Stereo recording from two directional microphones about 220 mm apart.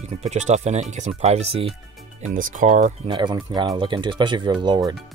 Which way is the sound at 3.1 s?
20° right (ahead or behind).